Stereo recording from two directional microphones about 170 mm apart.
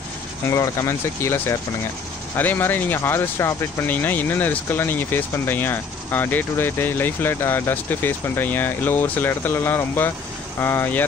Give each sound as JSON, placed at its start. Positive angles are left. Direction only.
{"t": 0.5, "sound": "speech", "side_deg": 15}